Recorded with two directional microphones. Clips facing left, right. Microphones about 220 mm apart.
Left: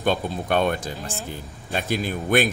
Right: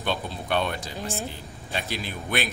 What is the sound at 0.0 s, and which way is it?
A man's voice, 45° left (ahead or behind).